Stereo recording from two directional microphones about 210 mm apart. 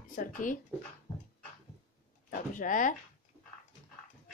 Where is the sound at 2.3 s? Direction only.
40° left (ahead or behind).